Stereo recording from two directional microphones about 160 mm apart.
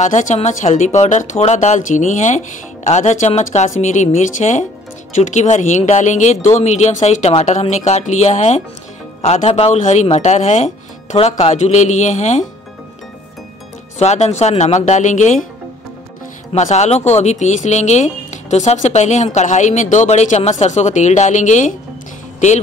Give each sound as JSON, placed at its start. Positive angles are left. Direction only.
{"t": 0.0, "sound": "speech", "side_deg": 50}
{"t": 13.9, "sound": "speech", "side_deg": 45}
{"t": 16.5, "sound": "speech", "side_deg": 45}